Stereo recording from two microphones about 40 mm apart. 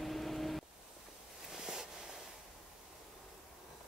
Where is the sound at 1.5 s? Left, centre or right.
Centre.